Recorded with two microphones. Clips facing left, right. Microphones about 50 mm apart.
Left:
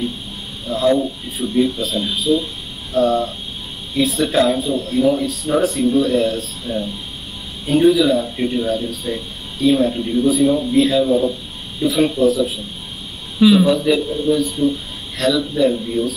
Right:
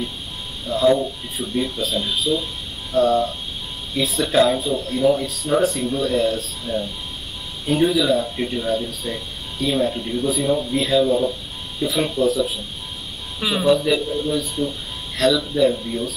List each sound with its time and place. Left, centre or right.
0.7 s speech: centre